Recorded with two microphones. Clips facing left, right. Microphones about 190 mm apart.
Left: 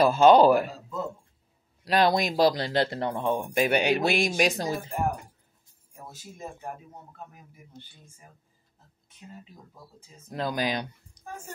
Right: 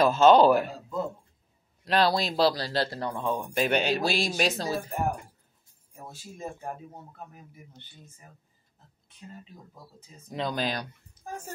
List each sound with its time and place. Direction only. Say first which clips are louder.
0.0 s speech: left 1 dB; 10° left (ahead or behind)
1.9 s speech: left 2 dB; 15° left (ahead or behind)
9.9 s speech: even; 5° left (ahead or behind)